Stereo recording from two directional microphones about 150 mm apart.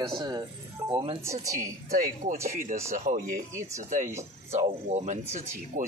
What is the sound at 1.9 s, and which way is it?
Speech, 60° right (ahead or behind).